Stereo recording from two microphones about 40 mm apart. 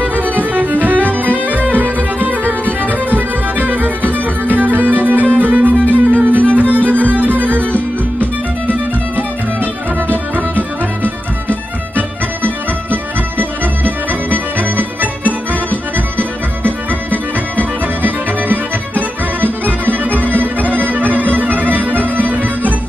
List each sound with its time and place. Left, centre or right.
0.0 s music: right
12.4 s music: right
18.0 s music: right